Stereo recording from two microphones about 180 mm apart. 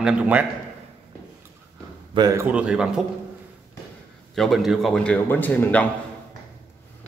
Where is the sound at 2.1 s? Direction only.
20° right (ahead or behind).